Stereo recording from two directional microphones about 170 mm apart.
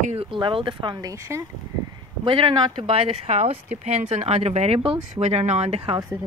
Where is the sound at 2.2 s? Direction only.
30° right (ahead or behind).